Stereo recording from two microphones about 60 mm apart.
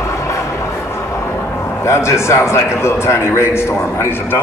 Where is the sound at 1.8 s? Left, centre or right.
Left.